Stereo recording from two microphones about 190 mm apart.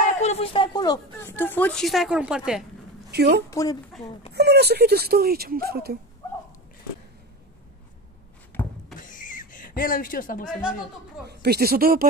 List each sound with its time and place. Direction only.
0.2 s a woman's voice: 30° left (ahead or behind); by 2.6 s 5° right (ahead or behind)
3.1 s a woman's voice: 60° right (ahead or behind)
3.4 s a woman's voice: 15° left (ahead or behind)
4.3 s speech: 60° right (ahead or behind)
9.0 s a sound: 45° left (ahead or behind)
11.2 s speech: 55° right (ahead or behind)